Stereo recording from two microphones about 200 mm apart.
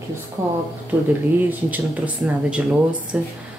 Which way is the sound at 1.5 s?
10° right (ahead or behind).